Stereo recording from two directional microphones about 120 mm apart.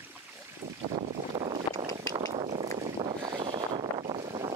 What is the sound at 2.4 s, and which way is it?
Boat, 60° right (ahead or behind).